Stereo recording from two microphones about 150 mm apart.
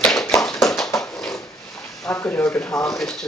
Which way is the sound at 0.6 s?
Centre (ahead or behind).